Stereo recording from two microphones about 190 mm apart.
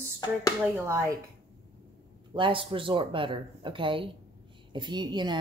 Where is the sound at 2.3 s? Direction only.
25° right (ahead or behind).